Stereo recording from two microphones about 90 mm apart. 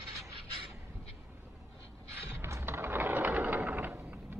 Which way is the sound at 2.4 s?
30° right (ahead or behind).